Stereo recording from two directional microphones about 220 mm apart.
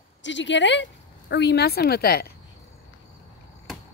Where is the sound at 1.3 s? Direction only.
50° left (ahead or behind).